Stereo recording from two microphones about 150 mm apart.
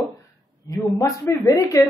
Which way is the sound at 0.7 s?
20° left (ahead or behind).